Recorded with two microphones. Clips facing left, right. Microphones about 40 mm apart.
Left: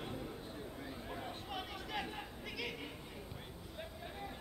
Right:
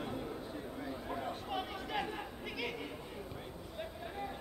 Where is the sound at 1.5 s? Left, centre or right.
Centre.